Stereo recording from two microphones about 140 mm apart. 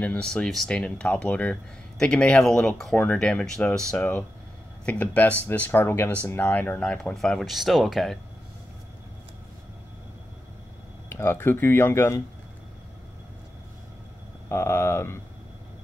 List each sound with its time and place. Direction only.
0.0 s speech: 10° left (ahead or behind)
11.1 s speech: 15° left (ahead or behind)
14.5 s speech: 15° left (ahead or behind)